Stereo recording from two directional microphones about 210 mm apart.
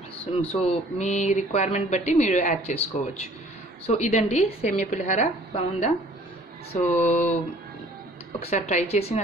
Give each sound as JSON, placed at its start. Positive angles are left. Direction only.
{"t": 0.3, "sound": "speech", "side_deg": 25}
{"t": 3.8, "sound": "speech", "side_deg": 30}
{"t": 8.4, "sound": "speech", "side_deg": 30}